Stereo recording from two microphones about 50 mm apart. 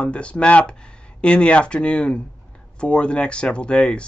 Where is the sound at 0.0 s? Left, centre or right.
Left.